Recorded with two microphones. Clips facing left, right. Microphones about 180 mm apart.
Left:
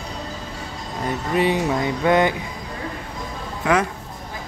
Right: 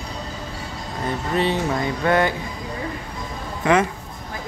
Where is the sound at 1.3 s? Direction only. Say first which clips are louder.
Left 2 dB; 10° left (ahead or behind).